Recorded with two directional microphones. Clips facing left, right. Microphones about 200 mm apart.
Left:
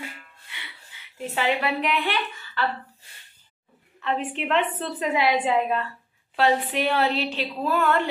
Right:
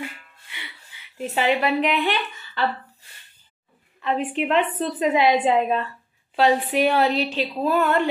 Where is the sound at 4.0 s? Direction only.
15° right (ahead or behind).